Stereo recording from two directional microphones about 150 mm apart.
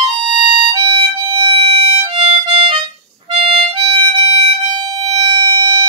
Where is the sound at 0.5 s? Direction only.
35° right (ahead or behind).